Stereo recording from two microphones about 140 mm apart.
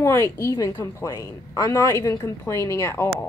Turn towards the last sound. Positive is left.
turn(degrees=15)  # may be behind; listen again after turning